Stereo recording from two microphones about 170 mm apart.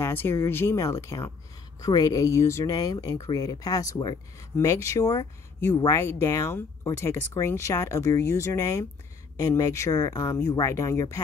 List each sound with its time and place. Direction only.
0.0 s speech: 15° left (ahead or behind)